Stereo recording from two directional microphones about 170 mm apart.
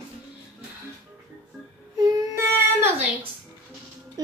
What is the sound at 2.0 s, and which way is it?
Speech, 15° right (ahead or behind).